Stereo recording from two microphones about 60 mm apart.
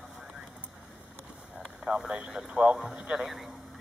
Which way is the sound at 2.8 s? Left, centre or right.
Centre.